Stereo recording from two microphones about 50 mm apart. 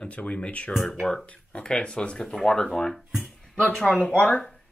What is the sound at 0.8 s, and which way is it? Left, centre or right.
Speech, centre.